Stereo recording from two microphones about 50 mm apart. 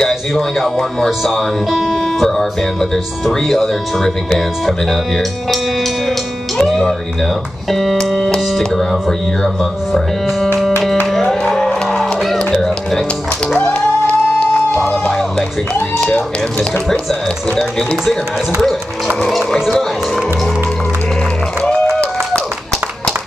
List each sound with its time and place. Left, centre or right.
0.0 s speech: centre
6.6 s music: centre
7.7 s speech: centre
11.1 s music: centre
13.6 s music: left
14.8 s music: centre
17.1 s speech: centre
19.2 s speech: centre